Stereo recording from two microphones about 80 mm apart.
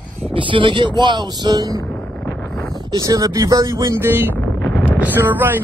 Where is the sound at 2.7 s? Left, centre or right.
Right.